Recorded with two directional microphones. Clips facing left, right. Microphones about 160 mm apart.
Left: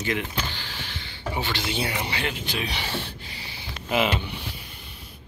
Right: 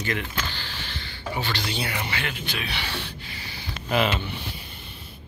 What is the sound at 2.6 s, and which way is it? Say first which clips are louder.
Speech: left 3 dB; 40° left (ahead or behind).